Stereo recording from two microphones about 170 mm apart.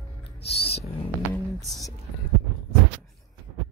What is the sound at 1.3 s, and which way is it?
Music, 20° left (ahead or behind).